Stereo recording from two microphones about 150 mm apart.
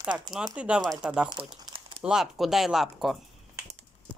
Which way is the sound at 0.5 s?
5° right (ahead or behind).